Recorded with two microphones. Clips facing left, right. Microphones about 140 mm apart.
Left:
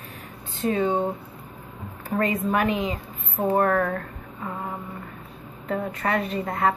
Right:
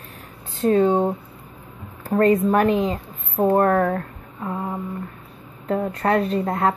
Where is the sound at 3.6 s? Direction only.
20° right (ahead or behind).